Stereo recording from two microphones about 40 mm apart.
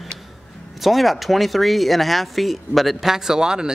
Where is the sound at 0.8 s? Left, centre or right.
Centre.